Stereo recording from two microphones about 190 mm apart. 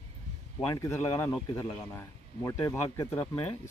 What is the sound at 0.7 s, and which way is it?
Speech, 15° left (ahead or behind).